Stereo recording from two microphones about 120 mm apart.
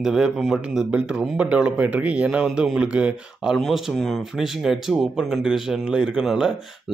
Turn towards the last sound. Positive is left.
turn(degrees=0)  # may be behind; listen again after turning